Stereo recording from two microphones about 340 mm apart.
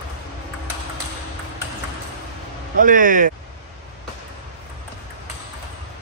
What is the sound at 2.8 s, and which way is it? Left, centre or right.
Speech, right.